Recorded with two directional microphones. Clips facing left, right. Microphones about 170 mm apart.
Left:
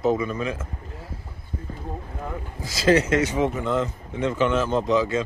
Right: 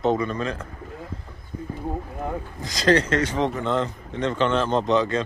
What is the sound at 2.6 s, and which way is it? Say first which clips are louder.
Speech: left 1 dB; 5° left (ahead or behind).